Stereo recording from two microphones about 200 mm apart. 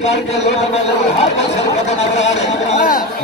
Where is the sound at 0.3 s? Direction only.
35° left (ahead or behind).